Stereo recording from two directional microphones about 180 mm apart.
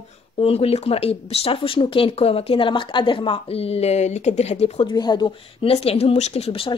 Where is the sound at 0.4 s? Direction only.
35° left (ahead or behind).